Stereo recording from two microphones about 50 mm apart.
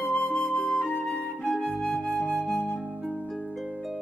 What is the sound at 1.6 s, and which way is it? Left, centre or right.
Flute, left.